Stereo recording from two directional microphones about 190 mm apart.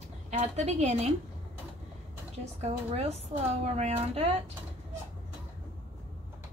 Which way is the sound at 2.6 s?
35° right (ahead or behind).